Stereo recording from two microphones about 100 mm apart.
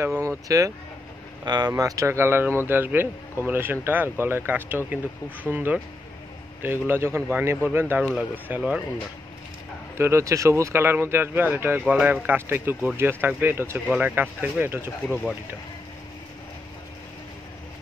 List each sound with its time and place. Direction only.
0.0 s speech: 25° right (ahead or behind)
1.4 s speech: 45° right (ahead or behind)
1.7 s speech: 35° right (ahead or behind)
8.0 s speech: 5° right (ahead or behind)
9.9 s speech: 30° right (ahead or behind)